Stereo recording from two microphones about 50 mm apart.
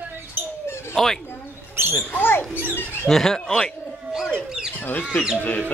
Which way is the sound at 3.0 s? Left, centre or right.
Centre.